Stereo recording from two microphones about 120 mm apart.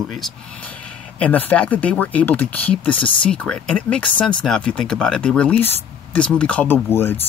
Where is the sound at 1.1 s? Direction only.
10° left (ahead or behind).